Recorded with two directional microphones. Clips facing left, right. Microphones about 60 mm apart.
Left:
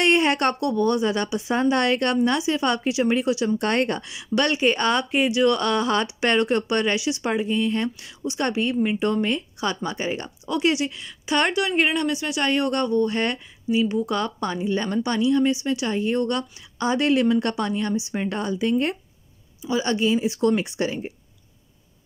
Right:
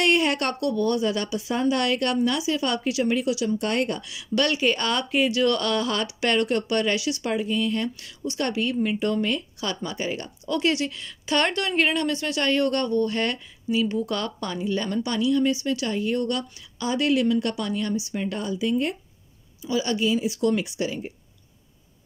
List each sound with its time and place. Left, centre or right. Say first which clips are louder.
0.0 s a woman's voice: left 3 dB; left
4.1 s speech: left 1 dB; left
10.4 s speech: left 2 dB; centre; by 18.9 s left
19.6 s a woman's voice: left 2 dB; left